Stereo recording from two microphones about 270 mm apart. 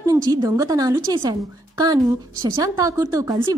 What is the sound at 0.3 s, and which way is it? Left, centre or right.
A woman's voice, centre.